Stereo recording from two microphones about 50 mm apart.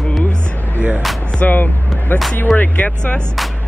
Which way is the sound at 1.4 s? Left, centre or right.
Left.